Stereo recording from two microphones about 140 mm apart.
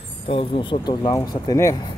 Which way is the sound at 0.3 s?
45° left (ahead or behind).